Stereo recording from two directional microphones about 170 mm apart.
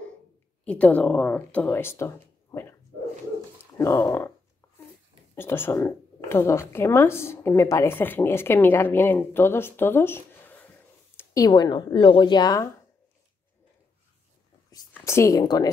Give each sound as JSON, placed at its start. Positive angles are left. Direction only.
{"t": 0.7, "sound": "speech", "side_deg": 10}
{"t": 3.7, "sound": "speech", "side_deg": 15}
{"t": 5.3, "sound": "speech", "side_deg": 15}
{"t": 11.3, "sound": "a woman's voice", "side_deg": 25}
{"t": 15.0, "sound": "a woman's voice", "side_deg": 15}